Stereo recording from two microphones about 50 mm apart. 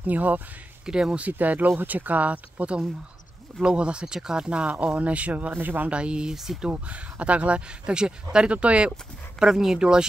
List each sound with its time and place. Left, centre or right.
0.0 s speech: right
0.8 s speech: centre
1.1 s speech: right
3.6 s speech: right
5.9 s speech: right
6.3 s speech: centre
6.7 s speech: right
9.4 s speech: centre